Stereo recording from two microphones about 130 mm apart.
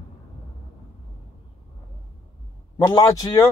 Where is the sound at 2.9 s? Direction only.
30° left (ahead or behind).